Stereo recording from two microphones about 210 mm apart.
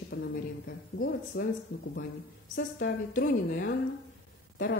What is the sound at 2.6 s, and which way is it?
A woman's voice, 50° left (ahead or behind).